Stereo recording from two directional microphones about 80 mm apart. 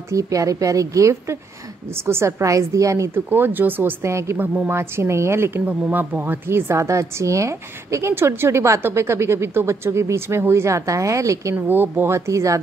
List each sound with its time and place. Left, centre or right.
0.1 s a woman's voice: right
3.3 s a woman's voice: right
5.7 s a woman's voice: right
11.5 s speech: right
12.3 s a woman's voice: right